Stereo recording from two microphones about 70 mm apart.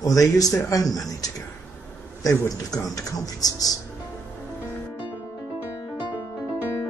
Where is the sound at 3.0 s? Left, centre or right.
Left.